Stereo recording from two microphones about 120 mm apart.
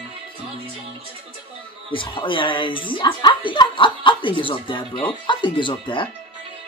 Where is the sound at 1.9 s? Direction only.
45° left (ahead or behind).